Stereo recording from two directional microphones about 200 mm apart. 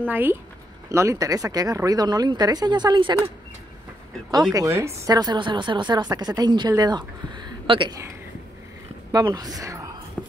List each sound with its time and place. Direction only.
0.1 s a woman's voice: 10° right (ahead or behind)
4.6 s a woman's voice: 15° right (ahead or behind)
9.1 s a woman's voice: 20° right (ahead or behind)
10.2 s dog: 5° left (ahead or behind)